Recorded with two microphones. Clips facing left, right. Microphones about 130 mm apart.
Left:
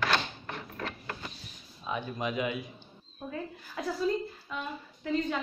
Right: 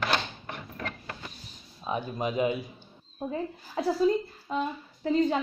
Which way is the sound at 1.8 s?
35° right (ahead or behind).